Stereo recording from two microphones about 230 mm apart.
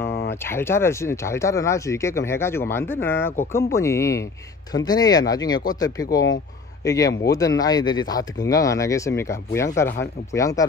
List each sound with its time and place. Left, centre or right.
0.3 s speech: centre